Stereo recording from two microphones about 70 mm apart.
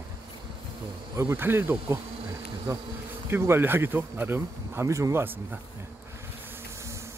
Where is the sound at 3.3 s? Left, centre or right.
Right.